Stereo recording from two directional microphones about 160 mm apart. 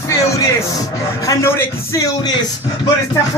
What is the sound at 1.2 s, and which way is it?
Speech, 20° left (ahead or behind).